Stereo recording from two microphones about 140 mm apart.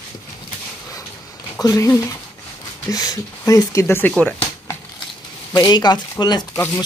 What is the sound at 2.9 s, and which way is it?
Speech, 25° left (ahead or behind).